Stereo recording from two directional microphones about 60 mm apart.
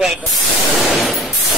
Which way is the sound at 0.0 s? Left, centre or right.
Centre.